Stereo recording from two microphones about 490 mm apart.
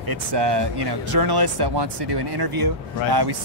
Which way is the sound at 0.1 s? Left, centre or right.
Right.